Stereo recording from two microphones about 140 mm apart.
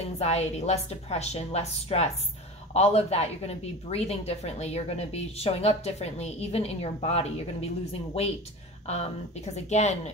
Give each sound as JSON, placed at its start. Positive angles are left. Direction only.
{"t": 0.0, "sound": "a woman's voice", "side_deg": 50}
{"t": 8.8, "sound": "a woman's voice", "side_deg": 50}